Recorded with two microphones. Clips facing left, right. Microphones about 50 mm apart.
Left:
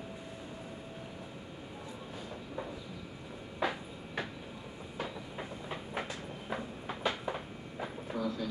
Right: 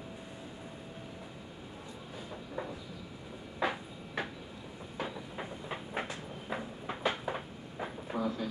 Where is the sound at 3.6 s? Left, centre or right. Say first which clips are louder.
Right 1 dB; centre.